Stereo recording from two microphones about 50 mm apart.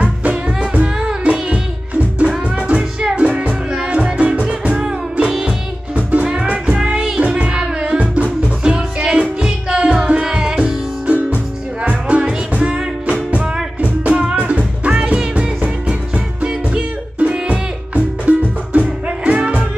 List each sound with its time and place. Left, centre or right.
0.0 s music: right
0.8 s music: centre
2.0 s music: right